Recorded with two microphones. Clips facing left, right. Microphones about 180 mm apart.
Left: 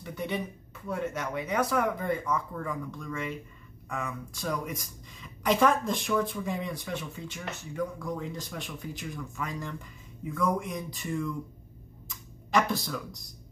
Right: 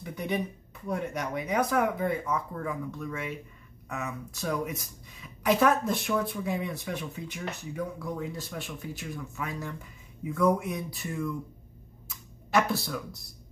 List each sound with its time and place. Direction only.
0.0 s a sound: 10° right (ahead or behind)
0.8 s speech: 15° right (ahead or behind)
12.4 s speech: 5° right (ahead or behind)